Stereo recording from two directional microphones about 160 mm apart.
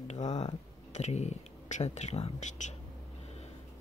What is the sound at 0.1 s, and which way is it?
Speech, 45° left (ahead or behind).